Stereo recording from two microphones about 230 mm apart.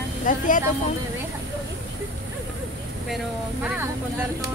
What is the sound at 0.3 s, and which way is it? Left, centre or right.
Speech, left.